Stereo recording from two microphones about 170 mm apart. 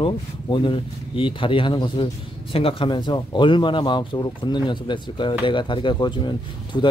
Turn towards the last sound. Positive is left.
turn(degrees=25)  # may be behind; listen again after turning